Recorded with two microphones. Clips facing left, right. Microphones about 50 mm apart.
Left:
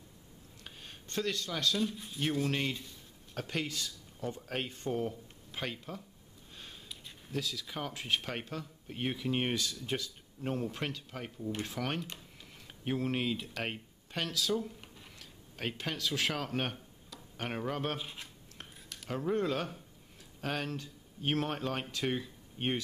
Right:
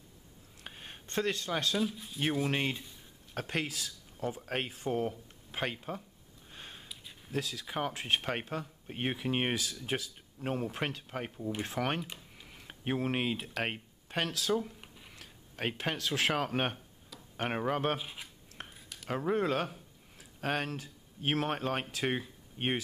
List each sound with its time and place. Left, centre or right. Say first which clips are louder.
0.7 s speech: right 3 dB; right
1.8 s speech: right 1 dB; centre
2.1 s speech: right 1 dB; centre
3.5 s speech: right 1 dB; centre
5.5 s speech: right 4 dB; right
6.5 s sniff: right 2 dB; right
7.5 s speech: right 4 dB; right
9.6 s speech: even; centre
14.2 s a sound: right 1 dB; centre
15.5 s speech: right 3 dB; right
17.9 s speech: right 2 dB; centre
19.0 s speech: right 2 dB; centre
20.3 s a sound: right 3 dB; right
20.6 s speech: even; centre